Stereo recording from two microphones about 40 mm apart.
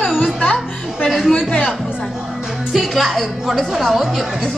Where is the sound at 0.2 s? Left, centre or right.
Left.